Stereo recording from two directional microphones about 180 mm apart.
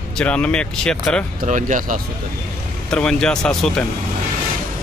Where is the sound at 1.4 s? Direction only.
45° right (ahead or behind).